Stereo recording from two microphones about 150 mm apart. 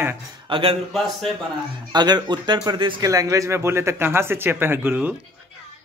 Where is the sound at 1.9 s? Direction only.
30° right (ahead or behind); by 5.1 s 10° right (ahead or behind).